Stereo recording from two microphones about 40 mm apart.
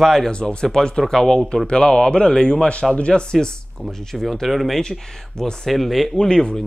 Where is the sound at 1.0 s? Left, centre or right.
Centre.